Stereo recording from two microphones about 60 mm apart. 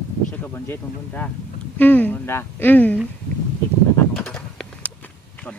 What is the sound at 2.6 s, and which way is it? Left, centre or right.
Speech, left.